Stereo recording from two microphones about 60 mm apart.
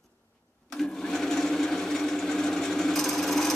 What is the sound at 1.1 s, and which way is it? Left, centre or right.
Engine, centre.